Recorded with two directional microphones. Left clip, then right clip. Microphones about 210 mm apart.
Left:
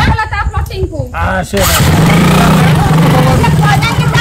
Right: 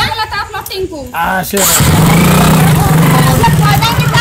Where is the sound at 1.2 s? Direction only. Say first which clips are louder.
Right 1 dB; 15° left (ahead or behind).